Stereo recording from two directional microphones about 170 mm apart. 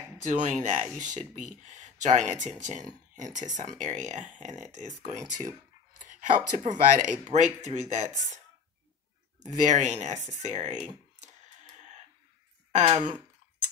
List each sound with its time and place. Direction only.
0.2 s speech: 45° right (ahead or behind)
9.7 s speech: 45° right (ahead or behind)
12.7 s speech: 35° right (ahead or behind)